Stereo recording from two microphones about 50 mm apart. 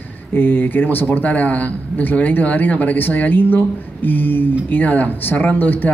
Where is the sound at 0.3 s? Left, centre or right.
Left.